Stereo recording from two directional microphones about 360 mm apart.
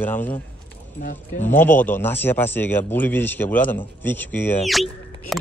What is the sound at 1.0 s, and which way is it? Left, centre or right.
Speech, left.